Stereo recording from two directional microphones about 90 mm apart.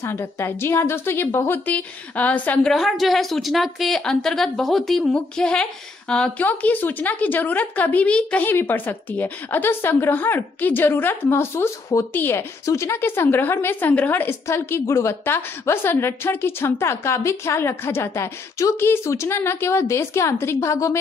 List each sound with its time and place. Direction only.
0.0 s a woman's voice: 30° left (ahead or behind)
2.7 s a woman's voice: centre (ahead or behind); by 21.0 s 30° left (ahead or behind)